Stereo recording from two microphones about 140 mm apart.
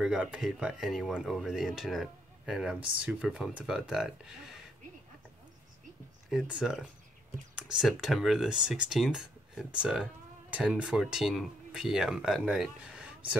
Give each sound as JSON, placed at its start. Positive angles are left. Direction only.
{"t": 0.0, "sound": "speech", "side_deg": -5}
{"t": 6.2, "sound": "speech", "side_deg": -5}